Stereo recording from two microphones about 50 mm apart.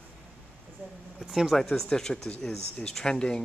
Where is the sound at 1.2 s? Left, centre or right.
Centre.